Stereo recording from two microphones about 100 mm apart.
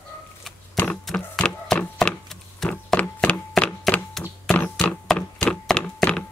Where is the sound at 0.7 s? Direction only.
5° left (ahead or behind).